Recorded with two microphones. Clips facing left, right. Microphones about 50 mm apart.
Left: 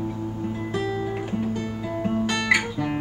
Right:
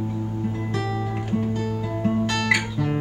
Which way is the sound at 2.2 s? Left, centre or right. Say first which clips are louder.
Even; centre.